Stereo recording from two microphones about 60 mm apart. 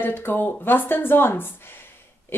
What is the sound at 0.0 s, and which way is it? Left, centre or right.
A woman's voice, left.